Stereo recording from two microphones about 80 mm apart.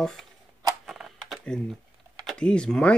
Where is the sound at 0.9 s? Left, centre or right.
Centre.